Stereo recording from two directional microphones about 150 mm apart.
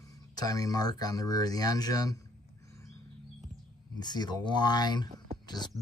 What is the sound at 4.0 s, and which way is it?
Speech, 30° left (ahead or behind).